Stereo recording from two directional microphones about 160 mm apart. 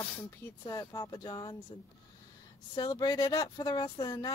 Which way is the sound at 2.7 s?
25° left (ahead or behind).